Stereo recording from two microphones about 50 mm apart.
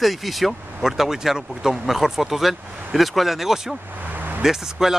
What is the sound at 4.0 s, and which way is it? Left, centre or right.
Vehicle, right.